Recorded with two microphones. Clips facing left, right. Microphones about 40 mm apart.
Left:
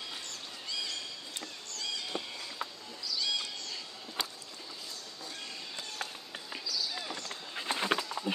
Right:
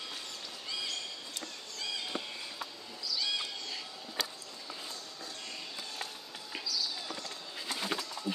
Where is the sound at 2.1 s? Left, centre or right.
Centre.